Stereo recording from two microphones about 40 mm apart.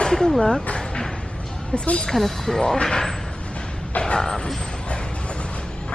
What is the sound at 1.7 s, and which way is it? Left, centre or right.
Speech, left.